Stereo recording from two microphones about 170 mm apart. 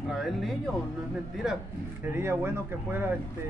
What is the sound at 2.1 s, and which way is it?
Speech, 15° right (ahead or behind).